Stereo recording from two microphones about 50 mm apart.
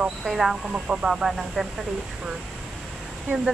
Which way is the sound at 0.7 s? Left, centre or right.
Right.